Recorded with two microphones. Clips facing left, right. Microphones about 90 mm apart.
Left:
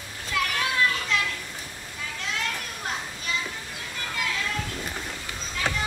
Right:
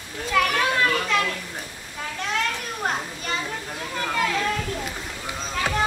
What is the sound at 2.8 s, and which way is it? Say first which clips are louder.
Children playing: right 5 dB; 45° right (ahead or behind).